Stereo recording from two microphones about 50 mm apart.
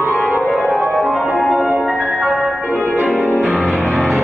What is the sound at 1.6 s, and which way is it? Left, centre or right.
Music, right.